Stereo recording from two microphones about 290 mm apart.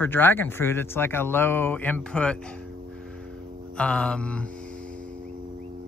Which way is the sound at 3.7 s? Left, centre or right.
Centre.